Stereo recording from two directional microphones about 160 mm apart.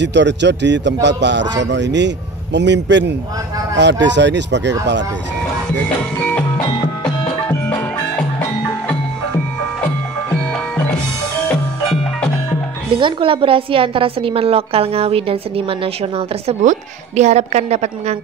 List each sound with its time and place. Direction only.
0.0 s a man's voice: 90° right
13.0 s a woman's voice: 35° right (ahead or behind)